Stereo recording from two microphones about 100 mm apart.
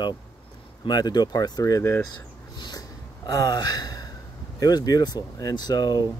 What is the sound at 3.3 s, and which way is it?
Speech, 40° left (ahead or behind).